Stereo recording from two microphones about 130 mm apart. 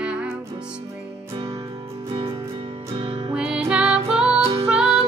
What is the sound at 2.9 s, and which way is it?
Music, 45° right (ahead or behind).